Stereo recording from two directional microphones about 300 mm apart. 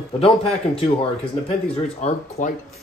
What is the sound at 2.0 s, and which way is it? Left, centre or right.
Speech, left.